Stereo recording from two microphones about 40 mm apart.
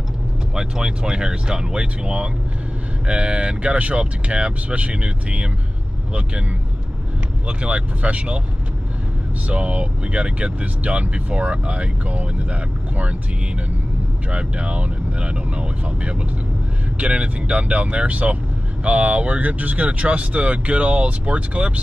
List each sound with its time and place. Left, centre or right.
0.6 s speech: centre
7.4 s speech: right
9.5 s speech: right
14.3 s speech: right